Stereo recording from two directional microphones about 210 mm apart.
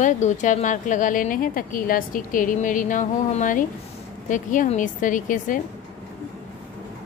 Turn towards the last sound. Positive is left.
turn(degrees=40)  # may be behind; listen again after turning